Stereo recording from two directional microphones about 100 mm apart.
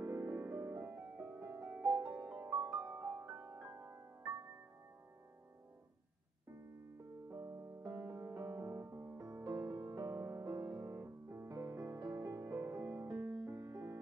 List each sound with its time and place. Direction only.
0.0 s music: 30° right (ahead or behind)
7.2 s piano: 25° right (ahead or behind)
7.8 s music: 25° right (ahead or behind)
9.4 s music: 35° right (ahead or behind)